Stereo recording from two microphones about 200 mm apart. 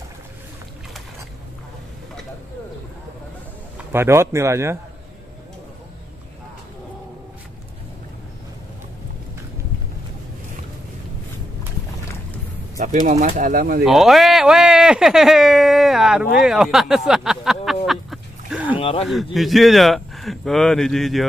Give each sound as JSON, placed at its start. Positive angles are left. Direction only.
{"t": 3.7, "sound": "a man's voice", "side_deg": -10}
{"t": 13.0, "sound": "speech", "side_deg": -35}
{"t": 13.8, "sound": "speech", "side_deg": 0}
{"t": 17.8, "sound": "a sound", "side_deg": 0}
{"t": 18.8, "sound": "speech", "side_deg": 30}
{"t": 19.3, "sound": "speech", "side_deg": 0}